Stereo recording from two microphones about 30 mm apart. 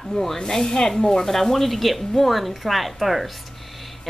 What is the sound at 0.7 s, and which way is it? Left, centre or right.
Speech, left.